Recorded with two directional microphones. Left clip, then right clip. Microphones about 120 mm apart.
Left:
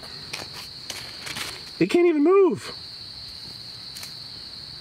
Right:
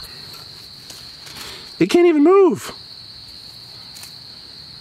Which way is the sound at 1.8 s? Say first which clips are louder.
Right 6 dB; 50° right (ahead or behind).